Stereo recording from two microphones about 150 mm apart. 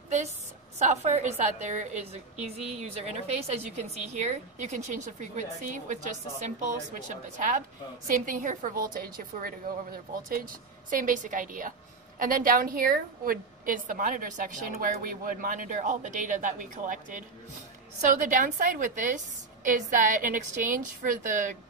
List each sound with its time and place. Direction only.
0.7 s a woman's voice: 50° right (ahead or behind)
8.1 s a woman's voice: 60° right (ahead or behind)
10.9 s a woman's voice: 60° right (ahead or behind)